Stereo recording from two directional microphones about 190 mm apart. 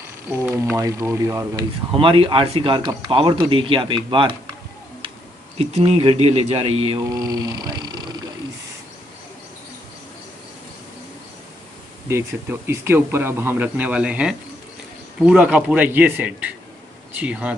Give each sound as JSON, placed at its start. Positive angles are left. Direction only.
{"t": 0.4, "sound": "speech", "side_deg": -15}
{"t": 5.6, "sound": "a man's voice", "side_deg": -35}
{"t": 7.2, "sound": "speech", "side_deg": -20}
{"t": 12.1, "sound": "speech", "side_deg": -15}